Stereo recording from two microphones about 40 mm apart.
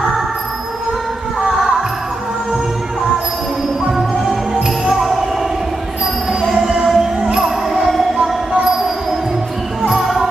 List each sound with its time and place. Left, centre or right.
1.4 s music: centre
4.6 s music: centre
4.9 s music: centre
6.4 s music: centre
7.2 s music: centre
7.4 s music: centre